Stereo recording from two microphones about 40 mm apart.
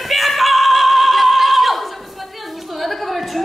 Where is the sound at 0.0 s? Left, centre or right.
Centre.